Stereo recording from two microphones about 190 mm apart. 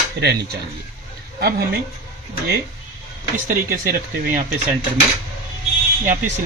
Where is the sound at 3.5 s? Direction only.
50° right (ahead or behind).